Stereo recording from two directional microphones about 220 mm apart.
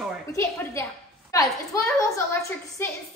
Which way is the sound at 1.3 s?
15° left (ahead or behind).